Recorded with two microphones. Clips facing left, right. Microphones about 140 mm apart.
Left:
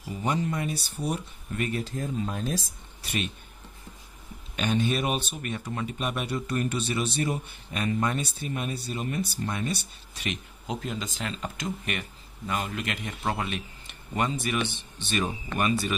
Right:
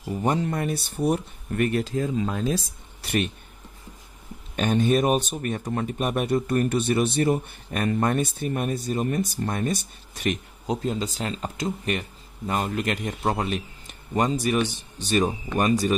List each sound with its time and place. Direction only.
0.1 s speech: 50° right (ahead or behind); by 2.3 s 90° right
3.0 s speech: 60° right (ahead or behind)
4.6 s a man's voice: 45° right (ahead or behind)